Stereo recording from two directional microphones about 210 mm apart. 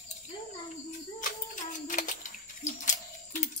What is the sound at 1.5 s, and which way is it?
Typewriter, 40° left (ahead or behind).